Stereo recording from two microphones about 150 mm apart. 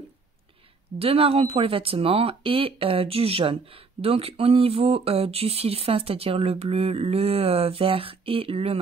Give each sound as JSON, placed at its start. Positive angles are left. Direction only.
{"t": 0.9, "sound": "speech", "side_deg": -40}